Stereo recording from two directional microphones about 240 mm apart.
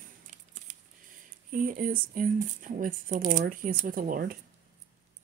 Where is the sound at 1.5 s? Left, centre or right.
Right.